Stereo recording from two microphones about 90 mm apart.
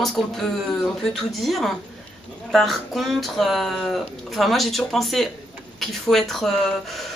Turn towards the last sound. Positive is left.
turn(degrees=5)  # may be behind; listen again after turning